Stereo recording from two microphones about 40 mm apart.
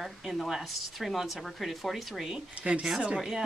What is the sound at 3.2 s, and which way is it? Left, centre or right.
Speech, centre.